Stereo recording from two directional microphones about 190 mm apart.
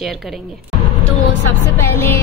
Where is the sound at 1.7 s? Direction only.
10° left (ahead or behind).